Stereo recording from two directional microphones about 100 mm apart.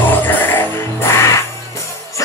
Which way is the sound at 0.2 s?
20° left (ahead or behind).